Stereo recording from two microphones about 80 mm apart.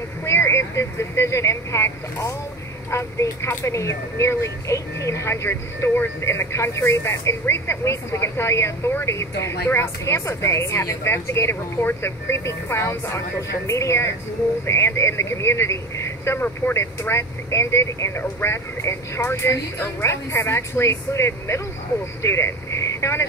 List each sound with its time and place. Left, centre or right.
0.2 s speech: left
16.3 s speech: left
17.0 s speech: left
22.9 s a sound: left